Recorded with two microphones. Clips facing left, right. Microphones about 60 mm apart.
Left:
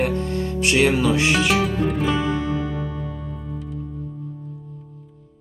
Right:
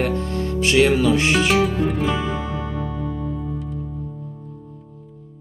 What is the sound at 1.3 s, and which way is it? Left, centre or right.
Music, centre.